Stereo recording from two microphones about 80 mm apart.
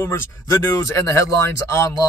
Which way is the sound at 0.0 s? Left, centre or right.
Left.